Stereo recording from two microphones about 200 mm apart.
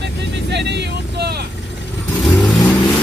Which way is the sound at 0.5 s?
60° right (ahead or behind).